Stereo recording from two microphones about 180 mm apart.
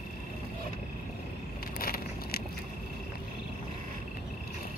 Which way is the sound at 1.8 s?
60° left (ahead or behind).